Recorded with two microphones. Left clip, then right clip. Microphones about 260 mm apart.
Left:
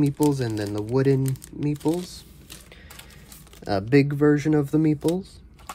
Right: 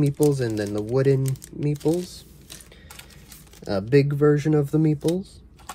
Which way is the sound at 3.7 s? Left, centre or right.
Left.